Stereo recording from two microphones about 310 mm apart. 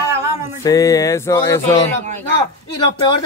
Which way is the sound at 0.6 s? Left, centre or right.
Centre.